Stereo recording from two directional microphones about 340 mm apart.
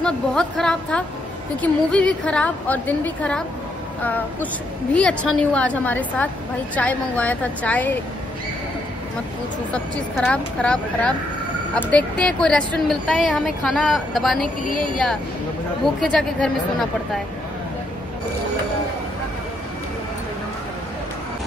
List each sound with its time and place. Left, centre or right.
0.0 s a woman's voice: centre
10.1 s a woman's voice: centre